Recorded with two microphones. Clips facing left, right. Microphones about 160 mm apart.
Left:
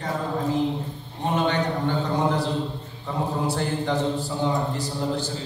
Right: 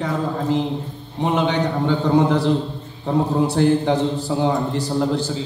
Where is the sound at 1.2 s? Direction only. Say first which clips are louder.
Right 4 dB; 85° right; by 4.8 s 70° right (ahead or behind).